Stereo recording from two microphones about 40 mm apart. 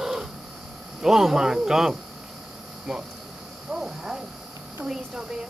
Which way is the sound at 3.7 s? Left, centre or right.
Centre.